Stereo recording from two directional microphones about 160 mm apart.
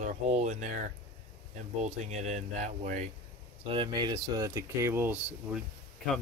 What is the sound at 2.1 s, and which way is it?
Speech, 45° right (ahead or behind).